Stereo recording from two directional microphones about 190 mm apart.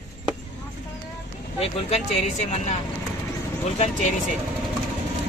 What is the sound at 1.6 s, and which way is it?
A woman's voice, 30° left (ahead or behind).